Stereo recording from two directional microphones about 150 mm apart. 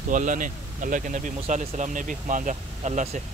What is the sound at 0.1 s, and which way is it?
Speech, 60° right (ahead or behind).